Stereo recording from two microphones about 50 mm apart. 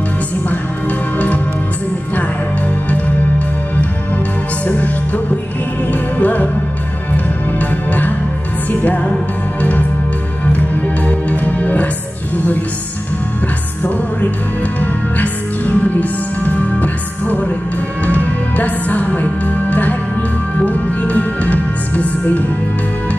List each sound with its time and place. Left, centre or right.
1.1 s music: left
4.6 s music: left
7.5 s music: left
11.1 s music: left
14.8 s music: left